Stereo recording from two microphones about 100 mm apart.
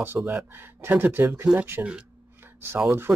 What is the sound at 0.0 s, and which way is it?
Speech, 20° right (ahead or behind).